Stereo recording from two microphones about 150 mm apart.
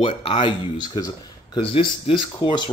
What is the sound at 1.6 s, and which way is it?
Speech, 40° left (ahead or behind).